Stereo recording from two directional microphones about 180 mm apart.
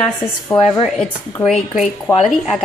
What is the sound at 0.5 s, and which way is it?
Speech, 20° left (ahead or behind).